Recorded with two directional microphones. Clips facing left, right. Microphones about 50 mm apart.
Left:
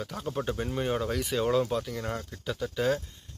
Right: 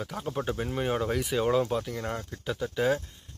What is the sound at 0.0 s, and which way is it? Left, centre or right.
Speech, centre.